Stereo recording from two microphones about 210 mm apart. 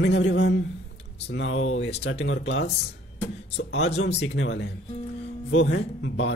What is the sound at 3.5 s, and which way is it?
Speech, 75° left (ahead or behind).